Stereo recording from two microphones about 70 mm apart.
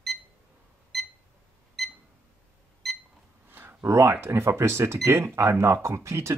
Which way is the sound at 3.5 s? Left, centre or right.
Right.